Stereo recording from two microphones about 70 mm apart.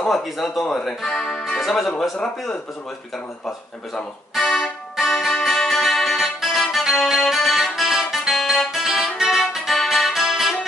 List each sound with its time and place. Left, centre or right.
0.1 s speech: centre
3.4 s music: centre